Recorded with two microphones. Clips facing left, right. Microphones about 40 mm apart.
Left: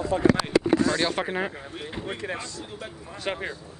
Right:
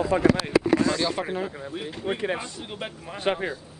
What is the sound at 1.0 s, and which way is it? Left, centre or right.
Speech, left.